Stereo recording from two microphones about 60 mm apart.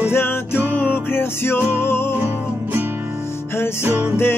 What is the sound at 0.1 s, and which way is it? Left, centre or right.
Music, left.